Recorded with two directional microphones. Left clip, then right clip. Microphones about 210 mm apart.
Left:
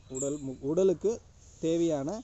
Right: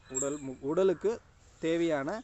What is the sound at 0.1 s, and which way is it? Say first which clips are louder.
Speech: left 1 dB; 30° right (ahead or behind).